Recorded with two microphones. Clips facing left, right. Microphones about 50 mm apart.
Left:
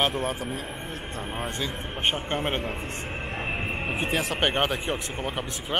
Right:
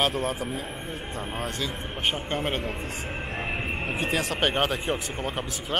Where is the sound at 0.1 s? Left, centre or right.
Centre.